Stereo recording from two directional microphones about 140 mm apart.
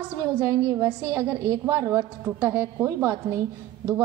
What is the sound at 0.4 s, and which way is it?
A woman's voice, 20° right (ahead or behind).